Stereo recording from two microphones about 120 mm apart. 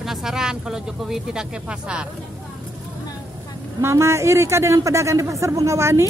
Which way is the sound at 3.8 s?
25° right (ahead or behind).